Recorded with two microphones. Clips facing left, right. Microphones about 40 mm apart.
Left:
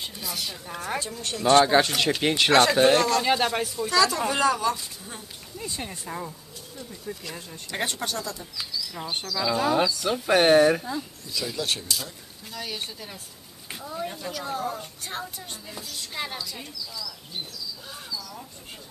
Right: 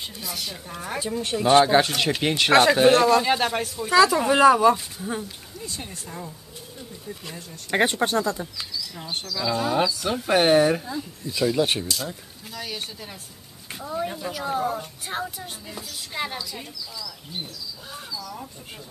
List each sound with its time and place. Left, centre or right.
0.0 s a woman's voice: centre
3.9 s a woman's voice: centre
5.7 s speech: centre
7.7 s speech: right
8.5 s a sound: centre
8.9 s a woman's voice: centre
11.5 s speech: right
12.5 s a woman's voice: centre